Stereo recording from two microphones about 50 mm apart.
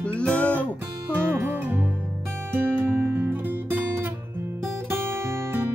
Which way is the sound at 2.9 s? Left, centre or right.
Right.